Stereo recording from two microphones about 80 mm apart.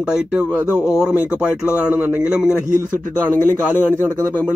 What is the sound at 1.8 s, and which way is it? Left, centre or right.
Speech, right.